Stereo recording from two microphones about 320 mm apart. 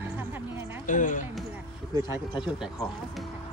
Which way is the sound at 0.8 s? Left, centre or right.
Left.